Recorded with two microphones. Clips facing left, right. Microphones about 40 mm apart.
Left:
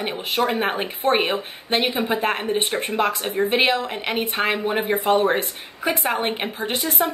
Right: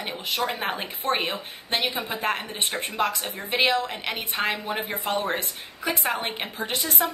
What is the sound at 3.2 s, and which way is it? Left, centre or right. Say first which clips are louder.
Speech: left 9 dB; left.